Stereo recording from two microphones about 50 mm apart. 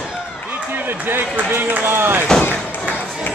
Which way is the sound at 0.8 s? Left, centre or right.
Right.